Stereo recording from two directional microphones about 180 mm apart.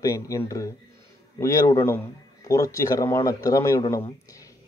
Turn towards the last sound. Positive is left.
turn(degrees=15)  # may be behind; listen again after turning